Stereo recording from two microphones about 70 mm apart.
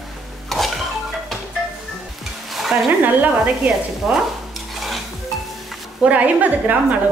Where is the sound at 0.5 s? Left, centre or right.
Centre.